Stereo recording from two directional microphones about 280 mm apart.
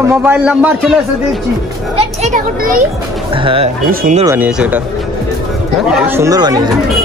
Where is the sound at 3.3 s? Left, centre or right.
Centre.